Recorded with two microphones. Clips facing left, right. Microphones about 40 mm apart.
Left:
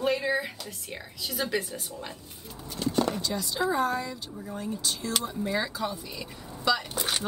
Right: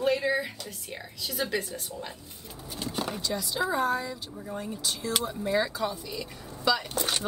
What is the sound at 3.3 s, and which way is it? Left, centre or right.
Speech, centre.